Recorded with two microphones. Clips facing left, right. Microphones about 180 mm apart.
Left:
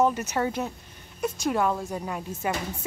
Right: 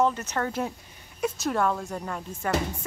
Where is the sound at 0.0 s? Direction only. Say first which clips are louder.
Left 2 dB; 10° left (ahead or behind).